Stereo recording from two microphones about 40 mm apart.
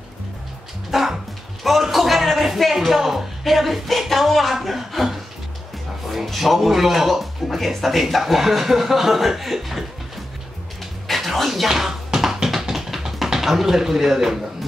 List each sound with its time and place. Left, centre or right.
0.9 s dog: centre
1.6 s music: centre
6.0 s speech: centre
11.1 s a sound: centre